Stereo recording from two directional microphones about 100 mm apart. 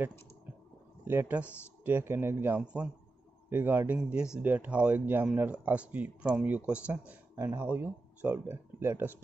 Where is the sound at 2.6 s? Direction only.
10° right (ahead or behind).